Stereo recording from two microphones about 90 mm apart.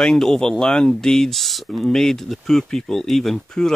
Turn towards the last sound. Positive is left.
turn(degrees=5)  # may be behind; listen again after turning